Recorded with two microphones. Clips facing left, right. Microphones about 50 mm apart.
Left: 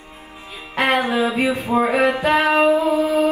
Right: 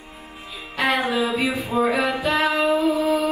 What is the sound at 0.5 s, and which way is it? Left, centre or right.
Music, left.